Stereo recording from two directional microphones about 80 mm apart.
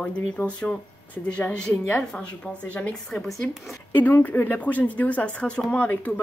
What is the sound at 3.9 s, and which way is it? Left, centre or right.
Speech, left.